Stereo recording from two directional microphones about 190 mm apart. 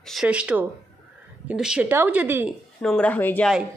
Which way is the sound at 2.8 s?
5° left (ahead or behind).